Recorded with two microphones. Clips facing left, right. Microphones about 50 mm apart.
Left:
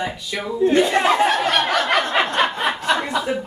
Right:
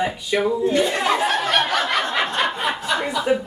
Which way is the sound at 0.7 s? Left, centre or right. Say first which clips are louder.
Left 3 dB; left.